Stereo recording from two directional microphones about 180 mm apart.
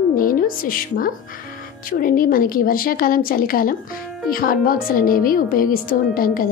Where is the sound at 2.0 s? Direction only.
50° left (ahead or behind).